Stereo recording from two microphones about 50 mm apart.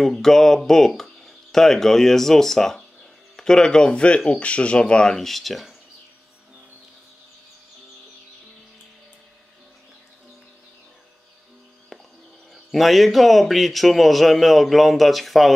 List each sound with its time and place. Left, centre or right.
0.0 s speech: centre
5.1 s speech: centre
11.9 s music: centre
12.5 s speech: centre